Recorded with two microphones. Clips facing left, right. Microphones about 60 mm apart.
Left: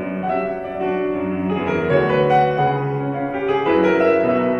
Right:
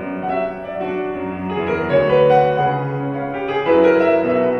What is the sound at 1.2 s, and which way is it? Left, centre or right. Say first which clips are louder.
Music: left 3 dB; left.